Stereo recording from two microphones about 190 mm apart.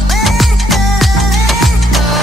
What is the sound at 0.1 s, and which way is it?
Music, centre (ahead or behind).